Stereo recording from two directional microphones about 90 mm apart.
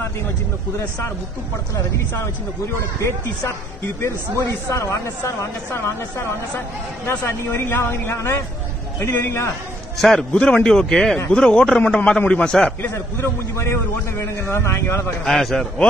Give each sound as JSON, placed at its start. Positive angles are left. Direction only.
{"t": 3.0, "sound": "a man's voice", "side_deg": 30}
{"t": 9.9, "sound": "a man's voice", "side_deg": 0}
{"t": 12.8, "sound": "a man's voice", "side_deg": 30}
{"t": 15.2, "sound": "a man's voice", "side_deg": 5}